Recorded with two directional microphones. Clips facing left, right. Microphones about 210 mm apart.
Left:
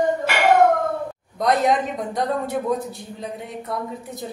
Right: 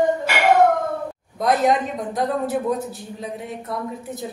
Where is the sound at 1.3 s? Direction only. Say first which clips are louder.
Right 1 dB; centre (ahead or behind).